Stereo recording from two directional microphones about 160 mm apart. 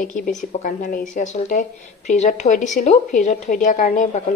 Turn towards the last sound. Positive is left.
turn(degrees=55)  # may be behind; listen again after turning